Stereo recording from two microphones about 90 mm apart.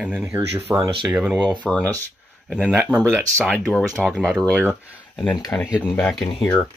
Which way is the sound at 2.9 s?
20° right (ahead or behind).